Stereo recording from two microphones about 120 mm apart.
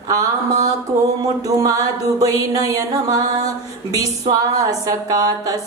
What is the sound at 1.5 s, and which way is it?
Music, 30° right (ahead or behind).